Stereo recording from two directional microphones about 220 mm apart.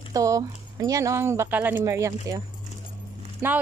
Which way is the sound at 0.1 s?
15° right (ahead or behind).